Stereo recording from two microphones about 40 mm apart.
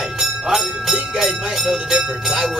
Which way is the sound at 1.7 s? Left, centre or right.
Centre.